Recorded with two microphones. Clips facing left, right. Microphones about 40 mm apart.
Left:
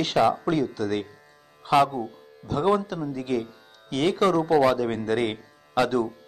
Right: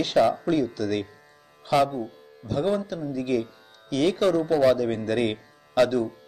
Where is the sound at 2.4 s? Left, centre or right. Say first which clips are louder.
Left 2 dB; left.